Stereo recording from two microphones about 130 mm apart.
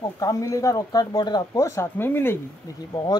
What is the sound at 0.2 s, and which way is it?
Speech, 25° left (ahead or behind).